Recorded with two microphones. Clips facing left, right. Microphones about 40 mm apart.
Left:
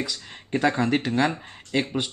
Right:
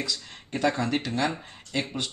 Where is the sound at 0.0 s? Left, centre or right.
Centre.